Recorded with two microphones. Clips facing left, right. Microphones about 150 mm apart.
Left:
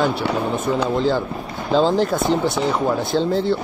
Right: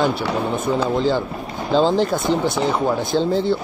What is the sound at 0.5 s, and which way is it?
Speech, centre (ahead or behind).